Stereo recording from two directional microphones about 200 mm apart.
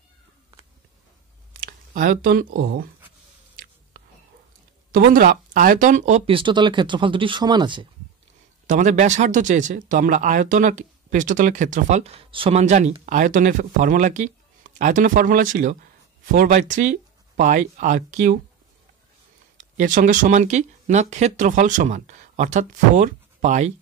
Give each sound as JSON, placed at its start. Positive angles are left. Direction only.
{"t": 1.6, "sound": "speech", "side_deg": -45}
{"t": 4.9, "sound": "speech", "side_deg": -45}
{"t": 8.6, "sound": "speech", "side_deg": -40}
{"t": 19.5, "sound": "speech", "side_deg": -40}